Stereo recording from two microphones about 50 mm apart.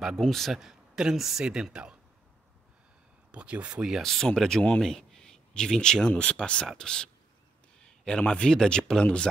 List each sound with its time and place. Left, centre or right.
0.2 s speech: centre
1.4 s speech: centre
3.3 s speech: right
4.0 s speech: centre
7.8 s a sound: centre
8.2 s speech: centre